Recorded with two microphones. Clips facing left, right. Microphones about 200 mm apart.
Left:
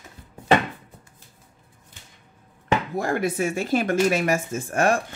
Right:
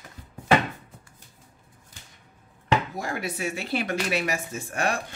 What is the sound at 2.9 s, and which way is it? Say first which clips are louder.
Speech: left 8 dB; 55° left (ahead or behind).